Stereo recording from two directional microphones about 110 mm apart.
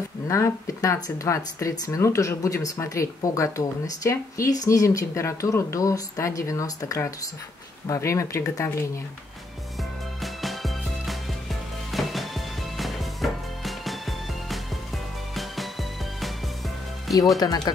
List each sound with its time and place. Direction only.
0.3 s speech: 30° left (ahead or behind)
10.2 s music: centre (ahead or behind)
17.4 s speech: 35° left (ahead or behind)